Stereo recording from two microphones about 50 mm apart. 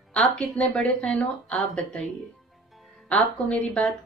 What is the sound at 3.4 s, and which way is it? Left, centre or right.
Speech, centre.